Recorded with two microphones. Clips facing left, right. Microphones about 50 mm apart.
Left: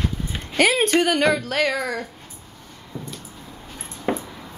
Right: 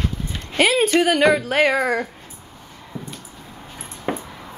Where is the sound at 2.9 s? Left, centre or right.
Centre.